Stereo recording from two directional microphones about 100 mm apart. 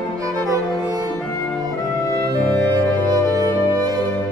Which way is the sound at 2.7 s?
35° right (ahead or behind).